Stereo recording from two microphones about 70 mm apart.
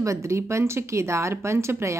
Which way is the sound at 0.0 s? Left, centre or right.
Right.